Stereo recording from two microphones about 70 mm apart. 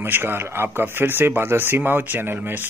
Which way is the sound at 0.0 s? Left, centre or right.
Right.